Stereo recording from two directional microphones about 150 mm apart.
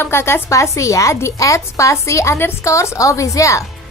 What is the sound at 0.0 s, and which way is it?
Speech, 15° left (ahead or behind).